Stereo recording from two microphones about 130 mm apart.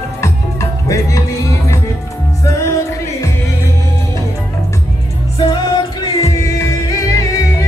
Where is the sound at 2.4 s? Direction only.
25° left (ahead or behind).